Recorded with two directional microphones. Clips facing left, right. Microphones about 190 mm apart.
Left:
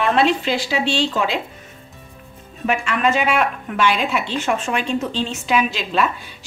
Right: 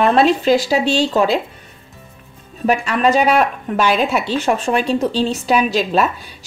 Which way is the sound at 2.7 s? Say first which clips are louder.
Right 4 dB; 35° right (ahead or behind).